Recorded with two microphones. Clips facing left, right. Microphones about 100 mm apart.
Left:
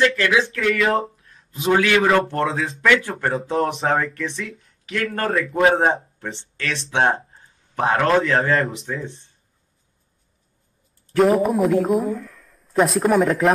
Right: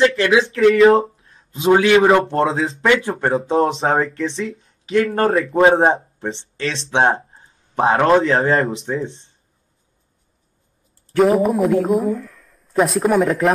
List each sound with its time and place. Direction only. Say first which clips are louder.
0.0 s a man's voice: right 4 dB; 25° right (ahead or behind)
11.1 s speech: right 2 dB; centre (ahead or behind)